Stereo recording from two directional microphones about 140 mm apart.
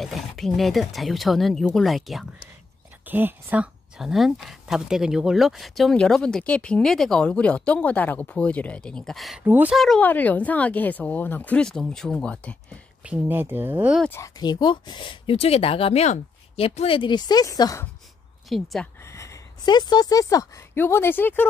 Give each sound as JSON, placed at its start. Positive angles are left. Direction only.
{"t": 0.0, "sound": "a woman's voice", "side_deg": 0}
{"t": 3.1, "sound": "a woman's voice", "side_deg": -15}
{"t": 9.4, "sound": "speech", "side_deg": -15}
{"t": 9.8, "sound": "speech", "side_deg": 5}
{"t": 13.0, "sound": "speech", "side_deg": -10}
{"t": 14.2, "sound": "speech", "side_deg": 30}
{"t": 18.5, "sound": "a woman's voice", "side_deg": 0}
{"t": 19.0, "sound": "speech", "side_deg": 20}